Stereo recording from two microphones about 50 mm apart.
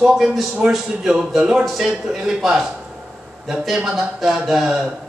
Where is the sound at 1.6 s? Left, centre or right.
Centre.